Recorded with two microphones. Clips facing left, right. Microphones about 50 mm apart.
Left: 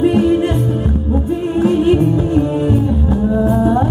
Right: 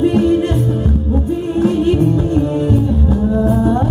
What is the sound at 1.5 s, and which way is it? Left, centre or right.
Music, centre.